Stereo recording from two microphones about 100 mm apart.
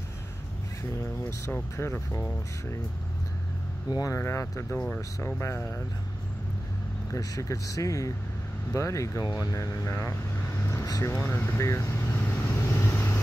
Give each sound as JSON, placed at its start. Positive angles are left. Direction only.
{"t": 1.4, "sound": "speech", "side_deg": 25}
{"t": 3.9, "sound": "speech", "side_deg": 35}
{"t": 4.7, "sound": "speech", "side_deg": 15}
{"t": 5.2, "sound": "speech", "side_deg": 25}
{"t": 7.1, "sound": "speech", "side_deg": 35}
{"t": 12.2, "sound": "vehicle", "side_deg": 20}